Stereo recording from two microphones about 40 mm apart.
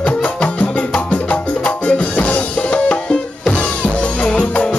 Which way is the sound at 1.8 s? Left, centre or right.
Left.